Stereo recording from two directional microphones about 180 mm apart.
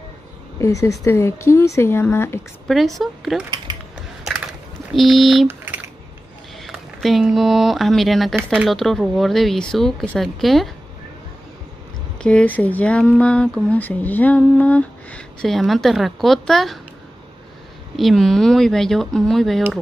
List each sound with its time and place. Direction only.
0.6 s speech: 15° left (ahead or behind)
2.7 s speech: centre (ahead or behind)
3.4 s speech: 25° right (ahead or behind)
4.9 s speech: centre (ahead or behind)
6.6 s speech: centre (ahead or behind)
12.2 s speech: 5° left (ahead or behind)
17.9 s speech: centre (ahead or behind)